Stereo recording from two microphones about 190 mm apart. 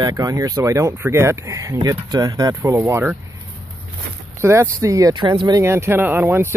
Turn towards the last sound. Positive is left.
turn(degrees=-10)  # may be behind; listen again after turning